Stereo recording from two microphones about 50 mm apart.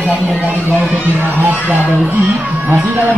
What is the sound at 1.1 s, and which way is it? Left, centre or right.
Speech, right.